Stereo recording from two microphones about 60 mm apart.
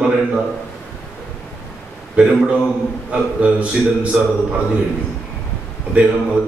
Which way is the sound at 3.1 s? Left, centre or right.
Right.